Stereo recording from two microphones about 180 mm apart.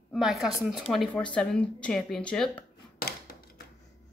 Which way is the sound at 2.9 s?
60° left (ahead or behind).